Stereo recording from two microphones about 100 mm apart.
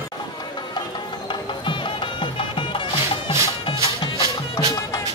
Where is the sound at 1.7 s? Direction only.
55° left (ahead or behind).